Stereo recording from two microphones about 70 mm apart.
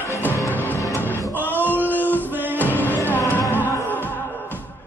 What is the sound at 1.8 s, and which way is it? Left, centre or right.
Male singing, right.